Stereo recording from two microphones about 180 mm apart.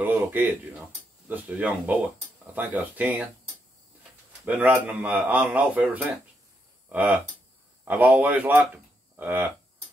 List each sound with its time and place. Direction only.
0.0 s speech: 10° right (ahead or behind)
4.5 s speech: 10° right (ahead or behind)